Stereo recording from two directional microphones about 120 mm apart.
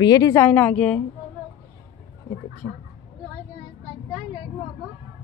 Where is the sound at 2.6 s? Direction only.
20° left (ahead or behind).